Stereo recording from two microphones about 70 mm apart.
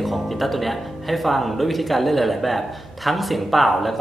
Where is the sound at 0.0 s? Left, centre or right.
Centre.